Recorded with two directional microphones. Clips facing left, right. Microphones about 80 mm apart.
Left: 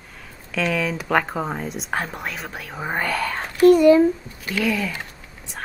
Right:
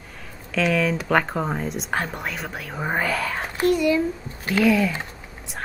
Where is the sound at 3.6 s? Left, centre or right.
Left.